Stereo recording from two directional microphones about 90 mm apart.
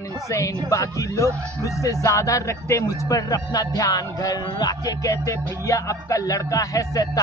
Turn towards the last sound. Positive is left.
turn(degrees=45)  # may be behind; listen again after turning